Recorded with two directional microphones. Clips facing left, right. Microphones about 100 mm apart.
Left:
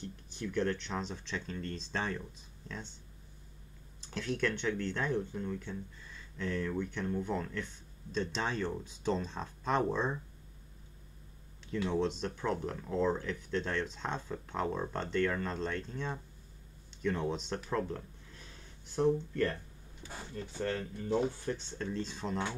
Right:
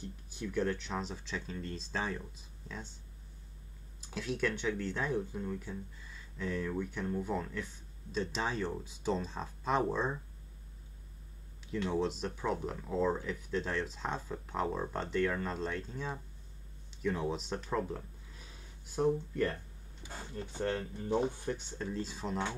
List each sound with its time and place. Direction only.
0.0 s speech: 5° right (ahead or behind)
4.0 s speech: 5° right (ahead or behind)
11.6 s speech: 5° right (ahead or behind)
17.6 s a sound: 10° right (ahead or behind)
20.3 s speech: 25° right (ahead or behind); by 22.5 s 5° right (ahead or behind)